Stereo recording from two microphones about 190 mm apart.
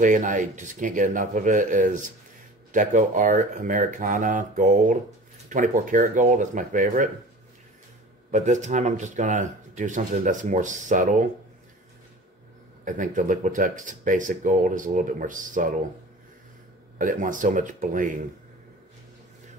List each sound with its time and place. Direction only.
0.0 s speech: 45° right (ahead or behind)
8.3 s speech: 40° right (ahead or behind)
12.8 s speech: 45° right (ahead or behind)
17.0 s speech: 45° right (ahead or behind)